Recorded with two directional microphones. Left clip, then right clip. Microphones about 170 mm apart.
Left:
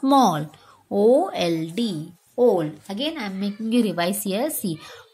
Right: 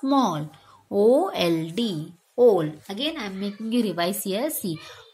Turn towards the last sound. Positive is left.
turn(degrees=15)  # may be behind; listen again after turning